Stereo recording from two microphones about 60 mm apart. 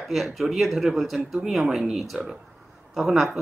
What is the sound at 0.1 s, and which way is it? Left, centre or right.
Speech, centre.